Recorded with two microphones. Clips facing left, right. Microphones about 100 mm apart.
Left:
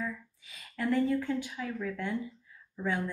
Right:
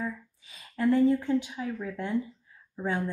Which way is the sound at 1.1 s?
25° right (ahead or behind).